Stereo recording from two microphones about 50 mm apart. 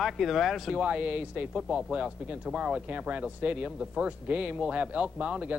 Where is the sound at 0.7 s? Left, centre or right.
Right.